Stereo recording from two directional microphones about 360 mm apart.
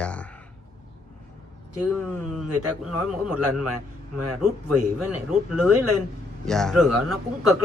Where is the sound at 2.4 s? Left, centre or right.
Right.